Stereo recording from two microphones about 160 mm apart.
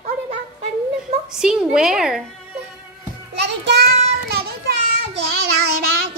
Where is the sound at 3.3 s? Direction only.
90° right.